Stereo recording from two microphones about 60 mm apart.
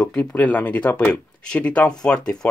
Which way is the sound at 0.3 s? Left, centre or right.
Left.